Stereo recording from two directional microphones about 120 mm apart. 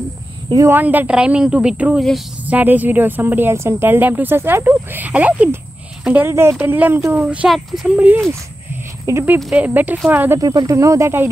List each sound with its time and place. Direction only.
0.6 s speech: 20° right (ahead or behind); by 2.2 s centre (ahead or behind)
2.4 s speech: 15° right (ahead or behind)
7.4 s speech: centre (ahead or behind); by 10.4 s 15° right (ahead or behind)
10.4 s speech: 30° right (ahead or behind)